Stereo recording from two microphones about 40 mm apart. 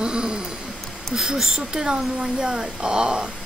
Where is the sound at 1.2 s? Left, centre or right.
Centre.